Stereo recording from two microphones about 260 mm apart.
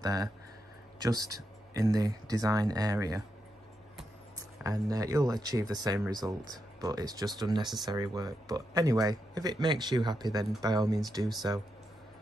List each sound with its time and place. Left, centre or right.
0.0 s speech: centre
4.6 s speech: centre